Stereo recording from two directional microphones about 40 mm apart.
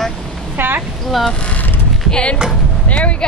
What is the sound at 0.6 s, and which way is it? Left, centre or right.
Speech, right.